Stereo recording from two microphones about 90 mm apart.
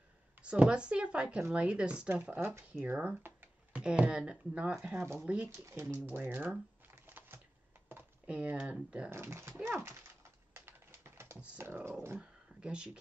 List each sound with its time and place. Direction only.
0.4 s speech: 10° right (ahead or behind)
2.4 s speech: 25° right (ahead or behind)
2.8 s a sound: 15° right (ahead or behind)
3.8 s speech: 10° right (ahead or behind)
4.9 s speech: 25° right (ahead or behind)
6.0 s speech: 20° right (ahead or behind)
7.1 s a sound: 25° right (ahead or behind)
7.9 s typing: 20° right (ahead or behind)
9.1 s speech: 30° right (ahead or behind)
10.5 s typing: 30° right (ahead or behind)
11.5 s speech: 25° right (ahead or behind)
12.2 s a sound: 10° right (ahead or behind)